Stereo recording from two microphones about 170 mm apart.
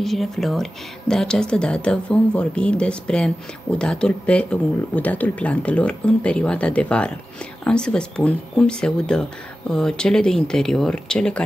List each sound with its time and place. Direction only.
0.0 s speech: centre (ahead or behind)